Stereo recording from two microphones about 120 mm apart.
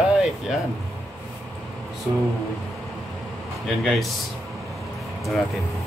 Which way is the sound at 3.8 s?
Centre (ahead or behind).